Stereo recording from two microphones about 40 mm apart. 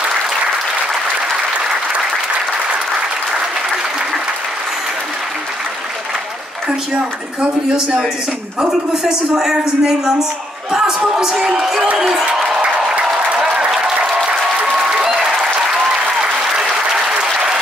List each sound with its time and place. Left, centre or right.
9.3 s speech: centre
12.4 s applause: centre
15.0 s applause: centre